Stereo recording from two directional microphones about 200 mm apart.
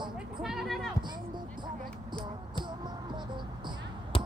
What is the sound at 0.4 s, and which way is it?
Basketball bounce, centre (ahead or behind).